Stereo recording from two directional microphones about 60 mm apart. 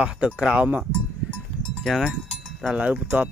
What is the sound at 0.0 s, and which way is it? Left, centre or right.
Speech, centre.